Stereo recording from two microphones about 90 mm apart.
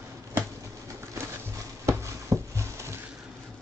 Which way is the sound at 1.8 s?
35° right (ahead or behind).